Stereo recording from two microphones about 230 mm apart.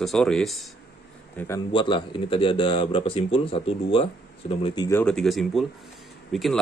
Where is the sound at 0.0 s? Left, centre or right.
Centre.